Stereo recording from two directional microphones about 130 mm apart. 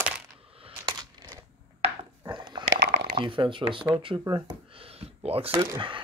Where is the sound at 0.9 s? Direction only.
35° right (ahead or behind).